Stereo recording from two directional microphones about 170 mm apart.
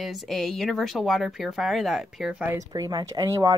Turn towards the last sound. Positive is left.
turn(degrees=-20)  # may be behind; listen again after turning